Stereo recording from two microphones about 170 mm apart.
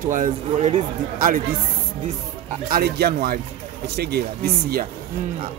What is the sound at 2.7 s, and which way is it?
Speech, 65° right (ahead or behind).